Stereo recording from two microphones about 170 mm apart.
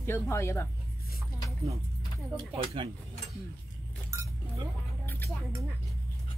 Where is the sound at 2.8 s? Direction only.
30° right (ahead or behind).